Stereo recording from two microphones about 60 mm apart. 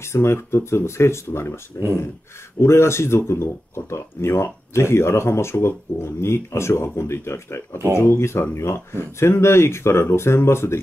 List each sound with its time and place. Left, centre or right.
0.0 s speech: left
2.6 s speech: left